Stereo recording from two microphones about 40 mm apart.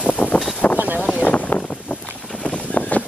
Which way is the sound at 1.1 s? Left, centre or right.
Left.